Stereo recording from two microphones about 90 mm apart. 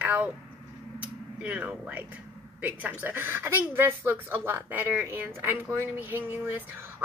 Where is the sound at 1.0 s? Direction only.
15° right (ahead or behind).